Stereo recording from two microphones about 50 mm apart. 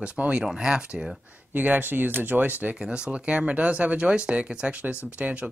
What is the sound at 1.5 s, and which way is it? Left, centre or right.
Speech, right.